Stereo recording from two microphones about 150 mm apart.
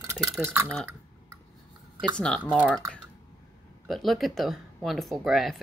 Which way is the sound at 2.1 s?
5° left (ahead or behind).